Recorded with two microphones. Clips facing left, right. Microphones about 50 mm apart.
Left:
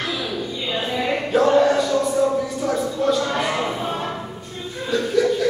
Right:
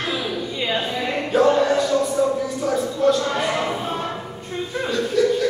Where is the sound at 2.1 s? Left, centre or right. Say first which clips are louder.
Left 1 dB; centre.